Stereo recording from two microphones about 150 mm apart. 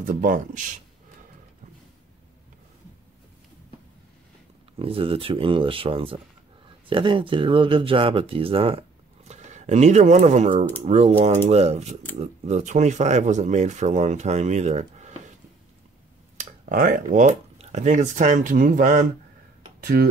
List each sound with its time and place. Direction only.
0.0 s a man's voice: 65° right (ahead or behind)
4.7 s speech: 40° right (ahead or behind)
9.3 s speech: 50° right (ahead or behind)
16.3 s speech: 60° right (ahead or behind)
19.8 s speech: 90° right